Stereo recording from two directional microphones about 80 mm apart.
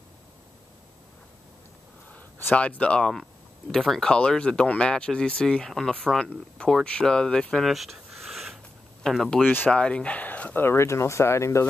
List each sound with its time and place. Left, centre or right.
2.1 s a sound: left
2.6 s speech: centre
3.7 s speech: centre; by 11.6 s left